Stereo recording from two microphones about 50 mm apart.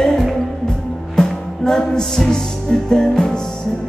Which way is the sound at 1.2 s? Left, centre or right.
Centre.